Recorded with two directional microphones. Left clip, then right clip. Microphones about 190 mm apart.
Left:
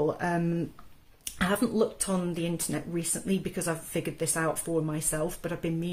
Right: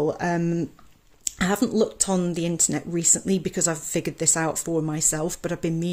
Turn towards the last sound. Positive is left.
turn(degrees=-50)  # may be behind; listen again after turning